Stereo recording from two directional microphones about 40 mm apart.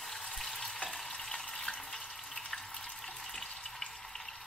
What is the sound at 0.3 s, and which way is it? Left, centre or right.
Frying, centre.